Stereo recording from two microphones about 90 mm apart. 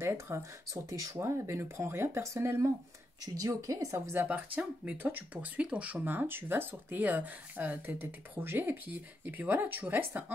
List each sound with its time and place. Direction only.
0.0 s speech: 30° right (ahead or behind)
4.1 s speech: 20° right (ahead or behind)